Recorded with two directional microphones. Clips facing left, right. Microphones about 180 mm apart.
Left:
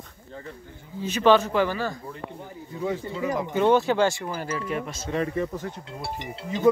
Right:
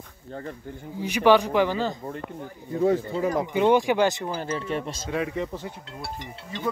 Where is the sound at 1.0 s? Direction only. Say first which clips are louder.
Even; 15° right (ahead or behind).